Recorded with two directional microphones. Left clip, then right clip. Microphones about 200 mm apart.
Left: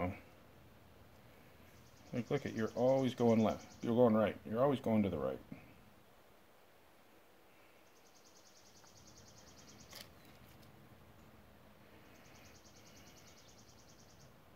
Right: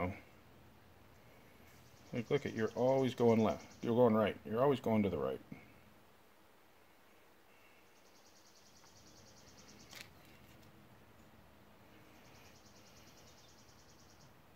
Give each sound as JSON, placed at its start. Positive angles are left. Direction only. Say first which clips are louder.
{"t": 2.1, "sound": "speech", "louder": "right 2 dB", "side_deg": -20}